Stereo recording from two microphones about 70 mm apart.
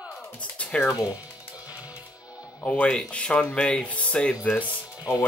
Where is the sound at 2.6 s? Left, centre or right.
Centre.